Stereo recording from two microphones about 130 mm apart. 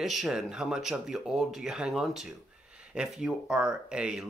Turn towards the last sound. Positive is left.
turn(degrees=-5)  # may be behind; listen again after turning